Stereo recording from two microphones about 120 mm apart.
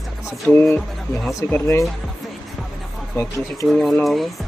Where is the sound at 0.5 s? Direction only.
20° left (ahead or behind).